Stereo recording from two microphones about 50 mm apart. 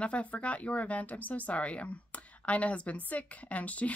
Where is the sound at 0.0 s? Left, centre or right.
Left.